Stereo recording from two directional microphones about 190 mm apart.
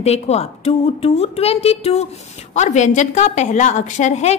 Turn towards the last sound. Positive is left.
turn(degrees=35)  # may be behind; listen again after turning